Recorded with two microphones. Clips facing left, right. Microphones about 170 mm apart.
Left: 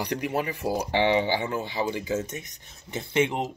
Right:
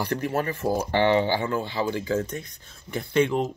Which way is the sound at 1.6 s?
15° left (ahead or behind).